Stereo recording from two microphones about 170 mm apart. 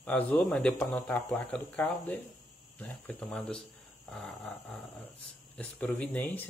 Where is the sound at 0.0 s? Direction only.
5° left (ahead or behind).